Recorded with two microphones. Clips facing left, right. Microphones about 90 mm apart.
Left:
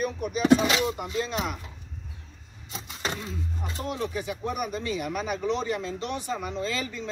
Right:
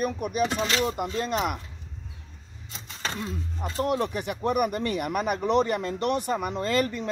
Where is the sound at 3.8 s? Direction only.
55° right (ahead or behind).